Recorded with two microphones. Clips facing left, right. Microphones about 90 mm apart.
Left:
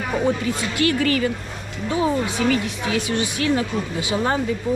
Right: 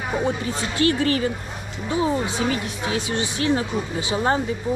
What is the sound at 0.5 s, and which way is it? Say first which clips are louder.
Speech: even; 25° right (ahead or behind).